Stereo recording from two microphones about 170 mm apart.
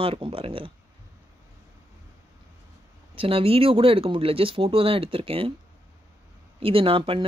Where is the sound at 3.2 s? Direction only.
35° right (ahead or behind).